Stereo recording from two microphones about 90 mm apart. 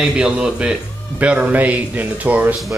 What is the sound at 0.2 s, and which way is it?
Speech, 10° right (ahead or behind).